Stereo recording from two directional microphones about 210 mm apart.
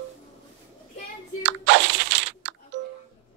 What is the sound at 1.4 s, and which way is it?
Music, 60° right (ahead or behind).